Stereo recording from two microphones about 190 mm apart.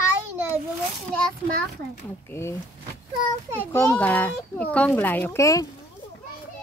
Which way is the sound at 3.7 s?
10° left (ahead or behind).